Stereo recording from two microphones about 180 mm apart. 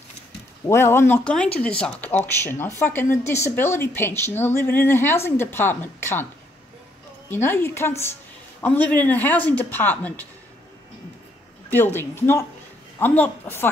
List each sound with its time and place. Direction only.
0.7 s speech: 15° left (ahead or behind)
7.2 s speech: 10° left (ahead or behind)
11.7 s speech: 10° left (ahead or behind)